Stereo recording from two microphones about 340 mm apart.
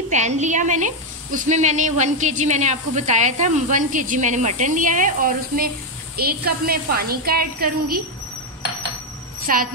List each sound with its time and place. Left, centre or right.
0.1 s speech: right
9.5 s speech: right